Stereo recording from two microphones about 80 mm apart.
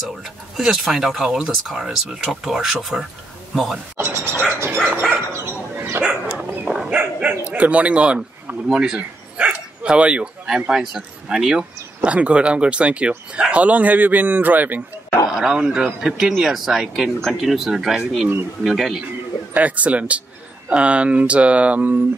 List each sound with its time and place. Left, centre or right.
0.6 s speech: centre
4.0 s a sound: right
5.3 s bow-wow: right
6.0 s dog: centre
7.5 s a man's voice: centre
15.3 s speech: centre
19.5 s speech: centre